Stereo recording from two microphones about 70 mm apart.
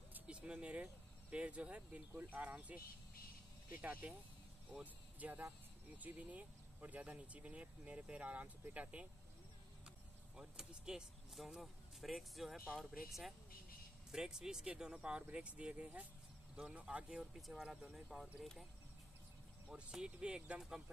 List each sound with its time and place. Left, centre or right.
0.1 s vehicle: centre
1.3 s speech: centre
14.1 s speech: centre
19.7 s speech: centre